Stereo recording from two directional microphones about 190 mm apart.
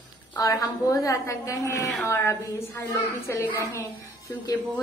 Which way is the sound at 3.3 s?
15° left (ahead or behind).